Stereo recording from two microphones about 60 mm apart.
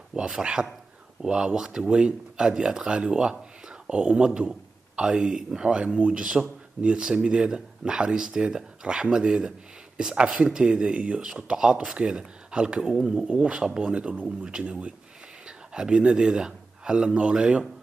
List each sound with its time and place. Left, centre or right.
0.1 s speech: centre
13.3 s speech: centre